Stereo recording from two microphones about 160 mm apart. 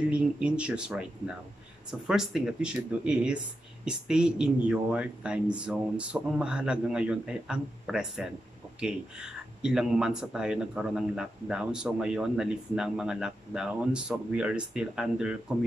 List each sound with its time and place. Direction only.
0.1 s speech: 5° right (ahead or behind)